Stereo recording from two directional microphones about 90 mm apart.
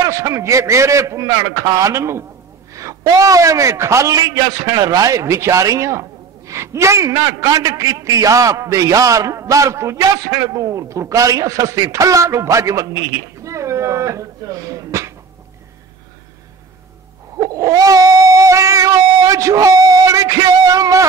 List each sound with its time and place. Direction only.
0.0 s a man's voice: 35° right (ahead or behind)
17.4 s owl: 40° right (ahead or behind)